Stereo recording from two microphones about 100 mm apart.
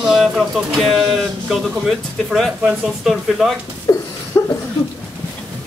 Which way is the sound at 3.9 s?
35° left (ahead or behind).